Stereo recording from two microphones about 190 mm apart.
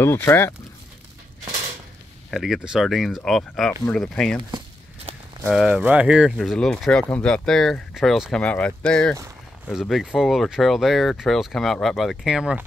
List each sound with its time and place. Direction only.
0.0 s speech: 15° left (ahead or behind)
2.3 s speech: centre (ahead or behind)
5.1 s a sound: 30° right (ahead or behind)
5.4 s speech: 5° right (ahead or behind)